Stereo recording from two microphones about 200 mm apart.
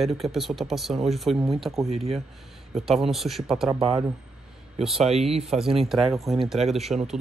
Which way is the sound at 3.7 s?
30° right (ahead or behind).